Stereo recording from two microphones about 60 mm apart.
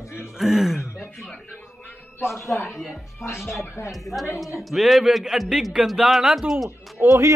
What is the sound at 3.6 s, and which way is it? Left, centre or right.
Speech, left.